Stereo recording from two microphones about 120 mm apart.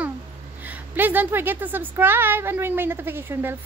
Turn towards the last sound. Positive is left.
turn(degrees=-20)  # may be behind; listen again after turning